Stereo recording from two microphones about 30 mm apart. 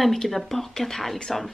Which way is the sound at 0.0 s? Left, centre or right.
Centre.